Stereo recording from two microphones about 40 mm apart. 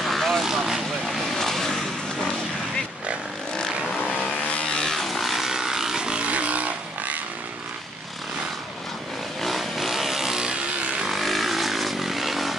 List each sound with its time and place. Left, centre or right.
0.0 s vehicle: centre
0.4 s vehicle: centre
1.3 s vehicle: centre
3.5 s vehicle: centre
4.5 s vehicle: left
4.8 s vehicle: centre
6.2 s vehicle: right
9.4 s vehicle: centre
10.5 s vehicle: right
11.1 s vehicle: centre